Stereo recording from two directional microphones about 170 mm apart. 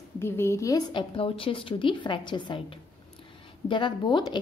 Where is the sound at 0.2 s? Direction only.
15° left (ahead or behind).